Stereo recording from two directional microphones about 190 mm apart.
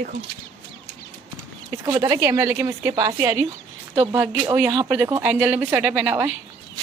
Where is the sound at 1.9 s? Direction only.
15° right (ahead or behind).